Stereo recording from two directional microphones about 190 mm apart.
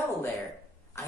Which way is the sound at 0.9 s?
15° left (ahead or behind).